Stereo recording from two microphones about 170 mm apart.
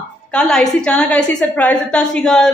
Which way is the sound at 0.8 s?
5° left (ahead or behind).